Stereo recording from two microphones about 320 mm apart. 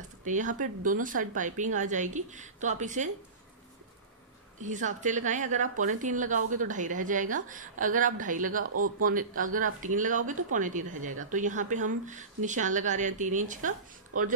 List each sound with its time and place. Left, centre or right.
0.2 s a woman's voice: right
4.6 s a woman's voice: right